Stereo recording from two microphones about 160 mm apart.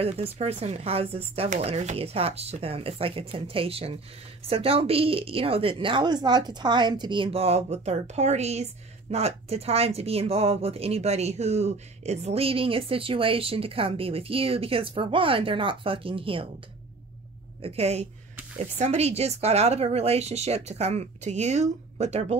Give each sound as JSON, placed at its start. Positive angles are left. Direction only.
{"t": 0.0, "sound": "speech", "side_deg": -40}
{"t": 17.6, "sound": "speech", "side_deg": -40}